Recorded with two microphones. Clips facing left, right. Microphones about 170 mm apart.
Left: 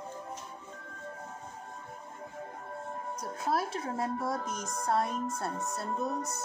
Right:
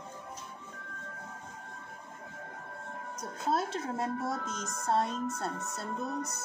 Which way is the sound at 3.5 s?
25° right (ahead or behind).